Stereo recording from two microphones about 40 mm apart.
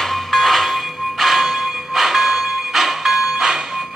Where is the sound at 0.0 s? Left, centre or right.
Centre.